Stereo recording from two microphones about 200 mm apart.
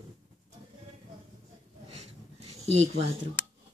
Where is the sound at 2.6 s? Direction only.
35° right (ahead or behind).